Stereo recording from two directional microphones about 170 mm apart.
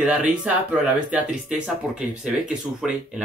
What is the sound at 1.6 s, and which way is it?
Speech, 5° right (ahead or behind).